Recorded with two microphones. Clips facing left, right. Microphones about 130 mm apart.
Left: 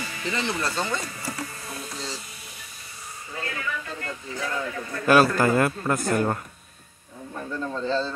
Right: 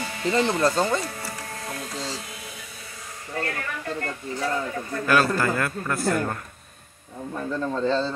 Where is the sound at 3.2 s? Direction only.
55° right (ahead or behind).